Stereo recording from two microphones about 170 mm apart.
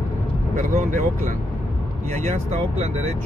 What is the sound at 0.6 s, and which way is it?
Speech, 45° right (ahead or behind).